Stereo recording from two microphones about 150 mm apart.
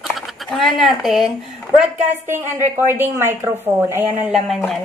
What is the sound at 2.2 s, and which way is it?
A woman's voice, 15° right (ahead or behind).